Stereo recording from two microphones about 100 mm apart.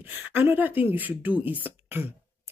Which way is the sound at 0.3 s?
20° right (ahead or behind).